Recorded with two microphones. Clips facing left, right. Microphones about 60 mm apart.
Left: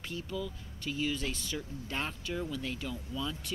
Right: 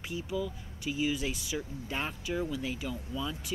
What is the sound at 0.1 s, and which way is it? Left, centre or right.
Speech, centre.